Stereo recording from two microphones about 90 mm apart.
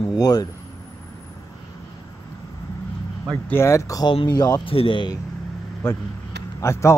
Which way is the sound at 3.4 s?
30° left (ahead or behind).